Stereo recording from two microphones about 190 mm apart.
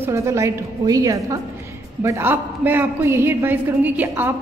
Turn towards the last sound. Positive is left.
turn(degrees=-10)  # may be behind; listen again after turning